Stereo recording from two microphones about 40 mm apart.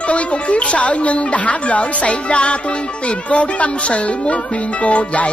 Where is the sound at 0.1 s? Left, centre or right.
Left.